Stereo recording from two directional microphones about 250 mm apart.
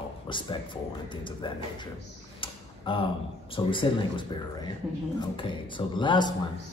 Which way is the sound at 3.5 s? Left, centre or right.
Centre.